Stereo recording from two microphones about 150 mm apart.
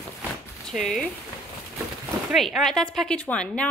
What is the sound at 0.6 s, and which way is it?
Speech, centre (ahead or behind).